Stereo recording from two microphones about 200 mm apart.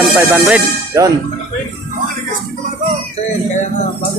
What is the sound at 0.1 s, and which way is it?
Speech, 15° right (ahead or behind).